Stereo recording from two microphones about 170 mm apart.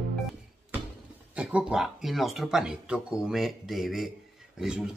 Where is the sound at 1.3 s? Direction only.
5° right (ahead or behind).